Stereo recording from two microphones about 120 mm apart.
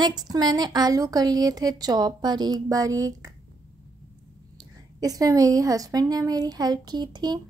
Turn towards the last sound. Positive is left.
turn(degrees=-35)  # may be behind; listen again after turning